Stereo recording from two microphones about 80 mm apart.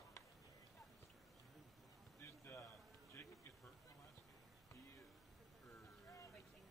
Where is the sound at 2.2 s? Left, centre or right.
Left.